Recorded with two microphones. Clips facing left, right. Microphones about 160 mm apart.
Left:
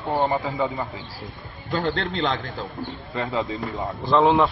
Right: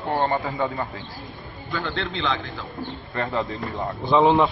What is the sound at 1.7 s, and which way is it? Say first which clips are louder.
Speech: left 4 dB; 40° left (ahead or behind).